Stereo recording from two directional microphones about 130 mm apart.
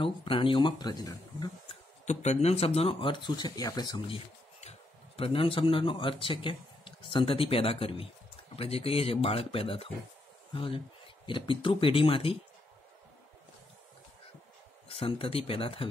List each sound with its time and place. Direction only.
0.0 s speech: 40° left (ahead or behind)
2.0 s speech: 55° left (ahead or behind); by 4.0 s 30° left (ahead or behind)
4.1 s speech: 50° left (ahead or behind)
14.9 s speech: 45° left (ahead or behind)